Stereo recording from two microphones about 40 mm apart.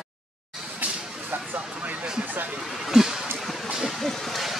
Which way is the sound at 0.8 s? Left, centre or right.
Right.